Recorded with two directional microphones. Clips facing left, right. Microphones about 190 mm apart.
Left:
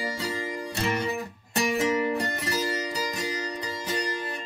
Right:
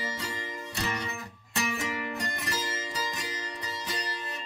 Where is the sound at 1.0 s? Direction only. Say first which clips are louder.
Left 8 dB; 30° left (ahead or behind).